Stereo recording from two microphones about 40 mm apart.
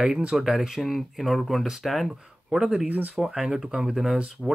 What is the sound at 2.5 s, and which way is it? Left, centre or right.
Speech, centre.